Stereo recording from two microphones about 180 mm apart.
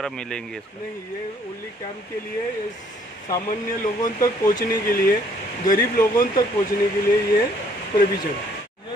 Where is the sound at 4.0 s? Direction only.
20° left (ahead or behind).